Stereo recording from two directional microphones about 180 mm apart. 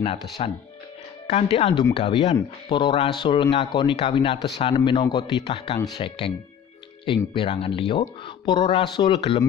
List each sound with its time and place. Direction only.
0.0 s speech: 35° left (ahead or behind)